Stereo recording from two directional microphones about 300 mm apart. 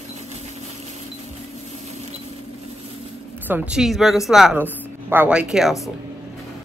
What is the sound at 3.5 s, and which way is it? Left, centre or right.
Speech, centre.